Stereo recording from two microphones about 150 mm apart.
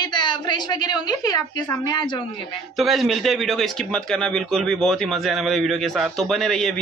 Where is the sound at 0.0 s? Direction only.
30° left (ahead or behind).